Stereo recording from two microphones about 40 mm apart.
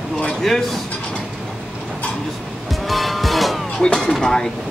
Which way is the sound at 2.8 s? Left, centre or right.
Centre.